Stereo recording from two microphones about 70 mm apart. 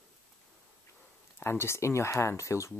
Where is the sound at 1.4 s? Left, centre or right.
Left.